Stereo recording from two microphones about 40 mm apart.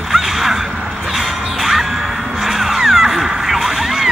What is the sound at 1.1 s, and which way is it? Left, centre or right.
Music, centre.